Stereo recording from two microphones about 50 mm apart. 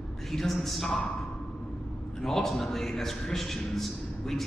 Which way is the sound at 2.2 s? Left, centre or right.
Centre.